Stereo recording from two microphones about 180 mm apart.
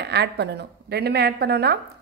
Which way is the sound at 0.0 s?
65° right (ahead or behind).